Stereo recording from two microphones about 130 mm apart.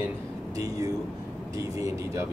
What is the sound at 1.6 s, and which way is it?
Speech, 25° right (ahead or behind).